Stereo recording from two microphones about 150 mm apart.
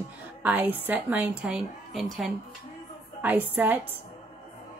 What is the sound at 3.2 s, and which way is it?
Speech, 10° right (ahead or behind).